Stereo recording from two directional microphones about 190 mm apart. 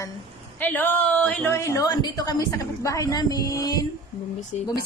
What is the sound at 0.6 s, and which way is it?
A woman's voice, 10° left (ahead or behind).